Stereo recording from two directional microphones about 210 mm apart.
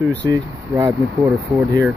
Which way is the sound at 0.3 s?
15° right (ahead or behind).